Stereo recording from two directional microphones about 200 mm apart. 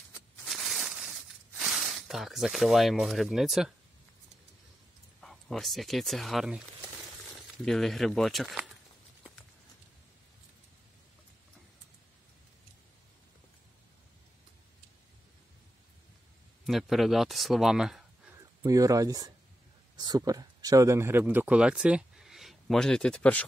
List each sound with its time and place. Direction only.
0.5 s a sound: centre (ahead or behind)
1.7 s speech: centre (ahead or behind)
5.2 s speech: centre (ahead or behind)
16.6 s speech: centre (ahead or behind)
18.6 s speech: 15° right (ahead or behind); by 23.4 s 5° left (ahead or behind)